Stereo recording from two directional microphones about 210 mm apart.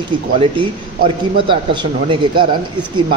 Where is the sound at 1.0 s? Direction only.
20° right (ahead or behind).